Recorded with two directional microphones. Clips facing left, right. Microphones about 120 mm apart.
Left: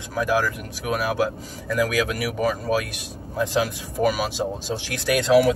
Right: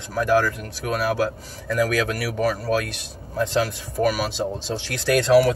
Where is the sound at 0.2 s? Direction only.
10° left (ahead or behind).